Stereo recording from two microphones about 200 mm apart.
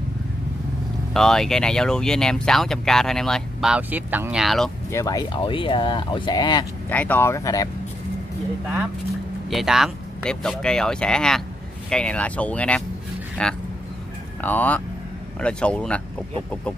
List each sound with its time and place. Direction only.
1.1 s speech: centre (ahead or behind)
4.9 s speech: 20° left (ahead or behind)
6.9 s speech: 10° left (ahead or behind)
9.5 s speech: centre (ahead or behind)